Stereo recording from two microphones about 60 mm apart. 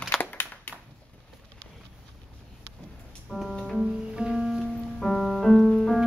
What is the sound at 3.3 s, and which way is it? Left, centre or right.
Music, centre.